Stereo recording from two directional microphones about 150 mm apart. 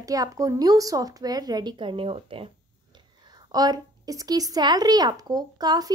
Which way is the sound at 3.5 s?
25° right (ahead or behind).